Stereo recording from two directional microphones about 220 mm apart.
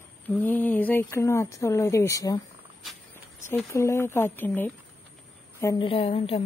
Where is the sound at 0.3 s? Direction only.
10° left (ahead or behind).